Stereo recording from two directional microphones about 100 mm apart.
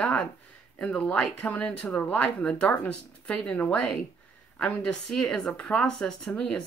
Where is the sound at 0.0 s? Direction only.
5° left (ahead or behind).